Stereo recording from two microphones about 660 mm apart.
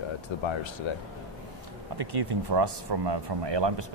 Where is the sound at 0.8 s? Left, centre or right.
Left.